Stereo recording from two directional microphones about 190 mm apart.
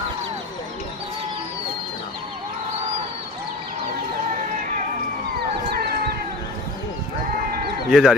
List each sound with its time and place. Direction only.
7.9 s speech: centre (ahead or behind)